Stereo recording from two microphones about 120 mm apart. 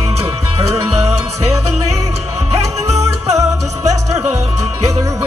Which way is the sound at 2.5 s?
60° right (ahead or behind).